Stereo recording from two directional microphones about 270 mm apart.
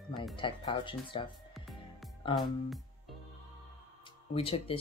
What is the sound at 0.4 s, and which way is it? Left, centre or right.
Speech, centre.